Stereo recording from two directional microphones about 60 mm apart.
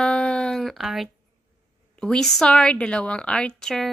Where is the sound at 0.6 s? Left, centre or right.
Centre.